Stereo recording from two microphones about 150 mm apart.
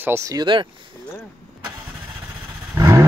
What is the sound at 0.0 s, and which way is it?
Speech, 20° right (ahead or behind).